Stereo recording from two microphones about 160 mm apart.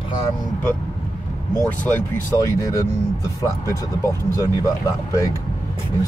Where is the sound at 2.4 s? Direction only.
20° left (ahead or behind).